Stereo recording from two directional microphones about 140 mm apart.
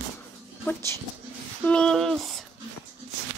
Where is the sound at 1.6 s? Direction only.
5° left (ahead or behind).